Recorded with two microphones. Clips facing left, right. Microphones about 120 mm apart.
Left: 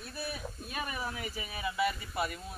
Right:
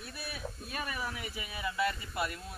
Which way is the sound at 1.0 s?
35° left (ahead or behind).